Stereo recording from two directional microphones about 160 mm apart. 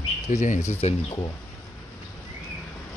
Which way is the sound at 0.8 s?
40° left (ahead or behind).